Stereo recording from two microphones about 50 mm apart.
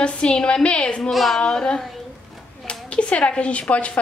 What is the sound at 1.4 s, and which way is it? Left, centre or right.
Speech, centre.